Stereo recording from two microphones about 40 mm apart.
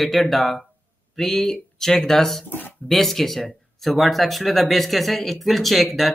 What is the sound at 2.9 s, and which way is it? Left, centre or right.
Speech, centre.